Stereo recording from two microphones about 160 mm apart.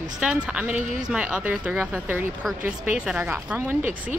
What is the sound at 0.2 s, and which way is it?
Speech, 5° right (ahead or behind).